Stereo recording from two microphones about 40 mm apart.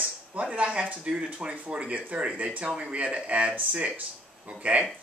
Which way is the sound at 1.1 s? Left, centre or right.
Right.